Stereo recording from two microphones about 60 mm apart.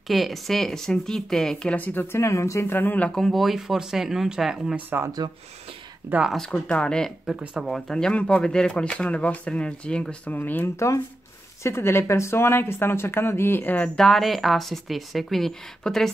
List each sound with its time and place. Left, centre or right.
0.1 s speech: centre
1.7 s speech: left
2.1 s speech: left
2.6 s speech: left
3.2 s speech: centre
4.7 s speech: right
6.3 s speech: centre
7.3 s speech: centre
7.6 s speech: centre
8.1 s speech: centre
10.3 s speech: left
11.6 s speech: left
13.9 s speech: centre